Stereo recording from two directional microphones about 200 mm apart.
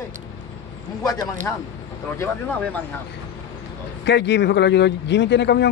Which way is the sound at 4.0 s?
60° left (ahead or behind).